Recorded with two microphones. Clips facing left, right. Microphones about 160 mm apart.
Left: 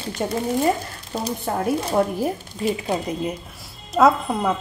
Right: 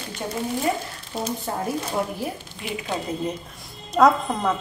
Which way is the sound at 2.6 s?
35° left (ahead or behind).